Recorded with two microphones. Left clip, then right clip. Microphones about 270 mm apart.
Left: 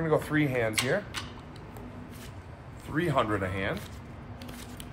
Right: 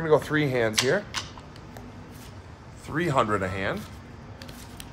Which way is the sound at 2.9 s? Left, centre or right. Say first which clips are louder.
Right 4 dB; right.